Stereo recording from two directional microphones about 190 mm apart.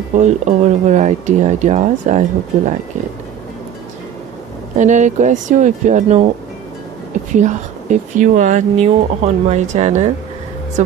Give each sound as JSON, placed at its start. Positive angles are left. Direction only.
{"t": 0.1, "sound": "speech", "side_deg": -35}
{"t": 4.7, "sound": "speech", "side_deg": -40}
{"t": 7.3, "sound": "speech", "side_deg": -40}